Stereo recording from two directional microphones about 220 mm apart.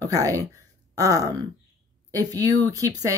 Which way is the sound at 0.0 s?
15° right (ahead or behind).